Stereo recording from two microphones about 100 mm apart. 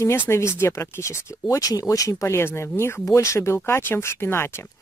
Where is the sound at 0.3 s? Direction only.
25° left (ahead or behind).